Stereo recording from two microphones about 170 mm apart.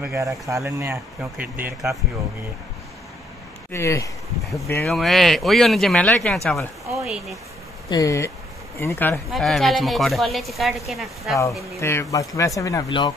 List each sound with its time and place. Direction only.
0.0 s speech: 15° right (ahead or behind)
3.7 s speech: 15° left (ahead or behind)
4.8 s a man's voice: centre (ahead or behind)
7.9 s speech: 20° left (ahead or behind)
9.3 s a man's voice: centre (ahead or behind)
11.8 s speech: 15° left (ahead or behind)